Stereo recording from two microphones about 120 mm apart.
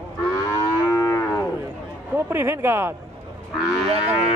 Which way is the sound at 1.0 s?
25° left (ahead or behind).